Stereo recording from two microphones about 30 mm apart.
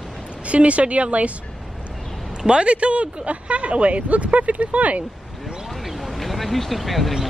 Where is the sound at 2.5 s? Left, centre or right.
Right.